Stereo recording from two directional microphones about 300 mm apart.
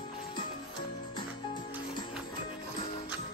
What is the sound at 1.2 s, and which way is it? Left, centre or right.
Music, centre.